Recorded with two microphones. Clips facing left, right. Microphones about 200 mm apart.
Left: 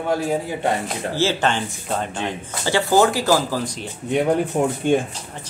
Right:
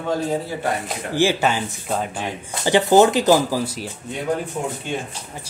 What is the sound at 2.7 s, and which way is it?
Speech, 20° right (ahead or behind).